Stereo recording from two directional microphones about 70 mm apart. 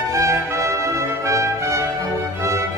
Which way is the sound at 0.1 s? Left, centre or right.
Right.